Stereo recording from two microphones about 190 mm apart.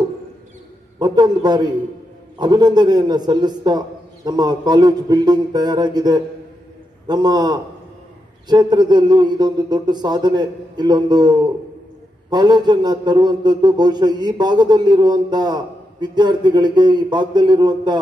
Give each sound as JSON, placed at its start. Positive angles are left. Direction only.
{"t": 0.9, "sound": "a man's voice", "side_deg": -20}